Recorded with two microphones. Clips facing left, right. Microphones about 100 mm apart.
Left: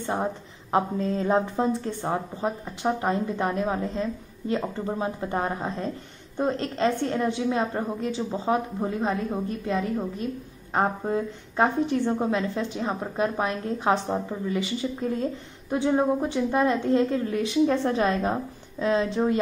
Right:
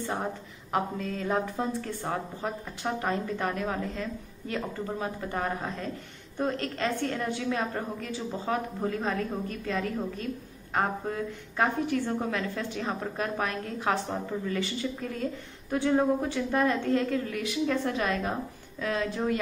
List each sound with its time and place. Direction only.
0.0 s a woman's voice: 20° left (ahead or behind)